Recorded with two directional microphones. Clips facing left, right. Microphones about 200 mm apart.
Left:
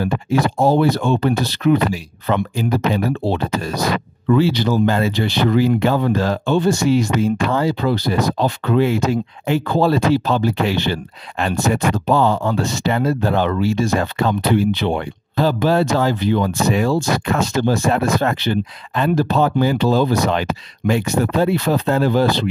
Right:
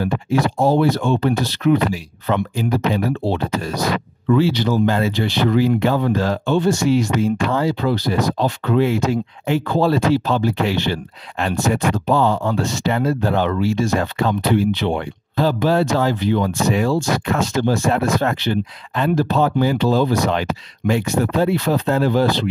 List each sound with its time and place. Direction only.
0.1 s speech: 40° left (ahead or behind)